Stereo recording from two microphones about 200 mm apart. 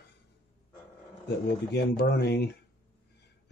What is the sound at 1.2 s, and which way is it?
Speech, 55° left (ahead or behind).